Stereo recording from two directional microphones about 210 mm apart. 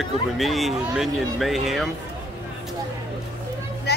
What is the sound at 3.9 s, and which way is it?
Vehicle, 50° left (ahead or behind).